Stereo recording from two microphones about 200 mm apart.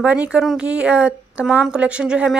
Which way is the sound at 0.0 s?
5° right (ahead or behind).